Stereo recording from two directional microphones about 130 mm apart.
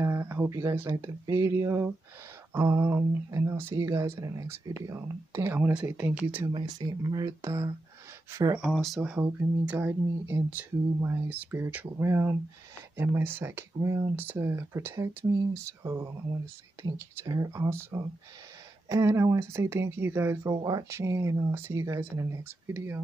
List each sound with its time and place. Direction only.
0.0 s speech: 20° right (ahead or behind)
5.6 s speech: 10° right (ahead or behind)
6.4 s speech: 30° right (ahead or behind)
8.7 s speech: centre (ahead or behind); by 16.1 s 20° right (ahead or behind)
17.1 s speech: 25° right (ahead or behind)